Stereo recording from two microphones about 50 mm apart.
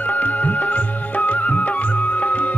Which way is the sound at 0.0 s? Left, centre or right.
Left.